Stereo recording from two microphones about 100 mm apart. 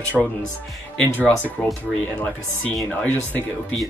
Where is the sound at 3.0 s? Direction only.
15° left (ahead or behind).